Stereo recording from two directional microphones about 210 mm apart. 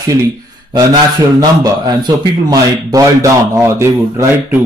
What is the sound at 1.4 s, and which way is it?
Speech, 20° right (ahead or behind).